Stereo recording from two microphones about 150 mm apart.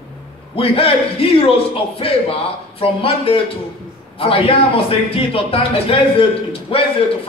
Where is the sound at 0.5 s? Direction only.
40° left (ahead or behind).